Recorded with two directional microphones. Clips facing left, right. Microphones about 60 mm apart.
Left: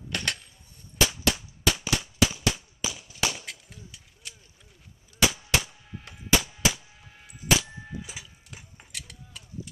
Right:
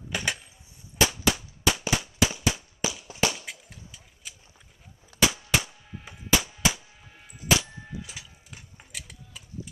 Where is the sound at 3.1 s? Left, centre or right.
Right.